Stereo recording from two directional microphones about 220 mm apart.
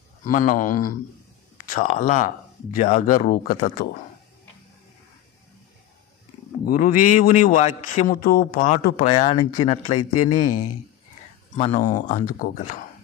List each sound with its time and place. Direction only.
0.2 s a man's voice: 40° left (ahead or behind)
6.6 s a man's voice: 40° left (ahead or behind)
9.4 s speech: 20° left (ahead or behind)
10.4 s speech: 90° left
11.5 s a man's voice: 30° left (ahead or behind)